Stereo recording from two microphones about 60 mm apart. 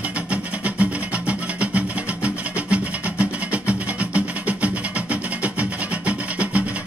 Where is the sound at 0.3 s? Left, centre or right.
Right.